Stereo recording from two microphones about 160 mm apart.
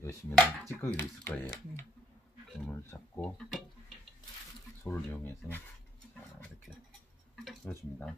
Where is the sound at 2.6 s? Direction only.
15° left (ahead or behind).